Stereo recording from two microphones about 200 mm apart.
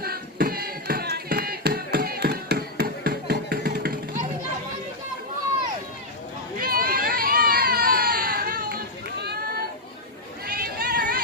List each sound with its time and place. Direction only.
0.0 s a sound: 50° right (ahead or behind)
6.6 s children playing: 45° right (ahead or behind)
10.4 s chatter: 50° right (ahead or behind)